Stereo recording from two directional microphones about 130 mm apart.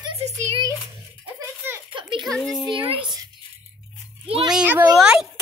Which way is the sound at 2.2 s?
Centre (ahead or behind).